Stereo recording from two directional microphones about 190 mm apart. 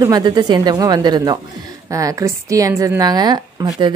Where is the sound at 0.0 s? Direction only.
20° right (ahead or behind).